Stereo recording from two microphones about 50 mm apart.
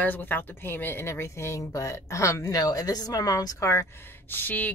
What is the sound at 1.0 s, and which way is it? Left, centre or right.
A woman's voice, left.